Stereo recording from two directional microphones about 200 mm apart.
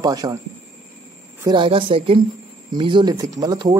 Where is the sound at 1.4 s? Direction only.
20° right (ahead or behind).